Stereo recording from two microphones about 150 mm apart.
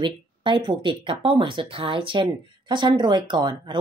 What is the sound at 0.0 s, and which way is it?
Speech, 30° right (ahead or behind).